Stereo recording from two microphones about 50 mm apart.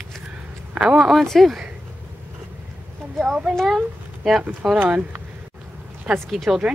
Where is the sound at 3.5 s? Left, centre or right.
Centre.